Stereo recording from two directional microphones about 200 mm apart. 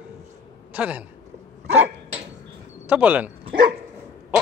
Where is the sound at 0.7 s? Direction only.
5° right (ahead or behind).